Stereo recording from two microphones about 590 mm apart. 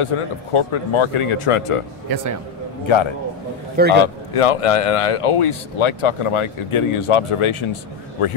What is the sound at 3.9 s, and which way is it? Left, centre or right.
A man's voice, left.